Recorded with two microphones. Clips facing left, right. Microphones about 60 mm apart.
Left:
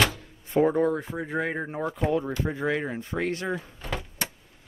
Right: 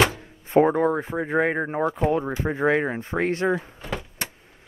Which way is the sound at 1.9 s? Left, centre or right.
Right.